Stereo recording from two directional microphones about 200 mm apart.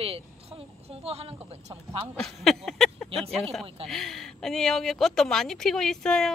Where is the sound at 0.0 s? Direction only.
30° right (ahead or behind).